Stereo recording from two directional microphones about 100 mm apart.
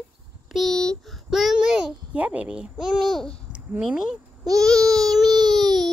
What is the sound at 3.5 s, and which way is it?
Speech, 10° right (ahead or behind).